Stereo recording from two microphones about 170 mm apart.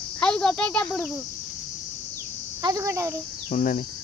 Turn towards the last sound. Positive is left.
turn(degrees=50)  # may be behind; listen again after turning